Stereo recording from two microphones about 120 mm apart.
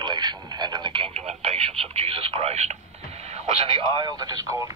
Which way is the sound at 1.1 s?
55° right (ahead or behind).